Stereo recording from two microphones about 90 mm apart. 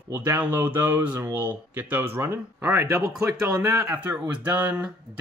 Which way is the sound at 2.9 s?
40° right (ahead or behind).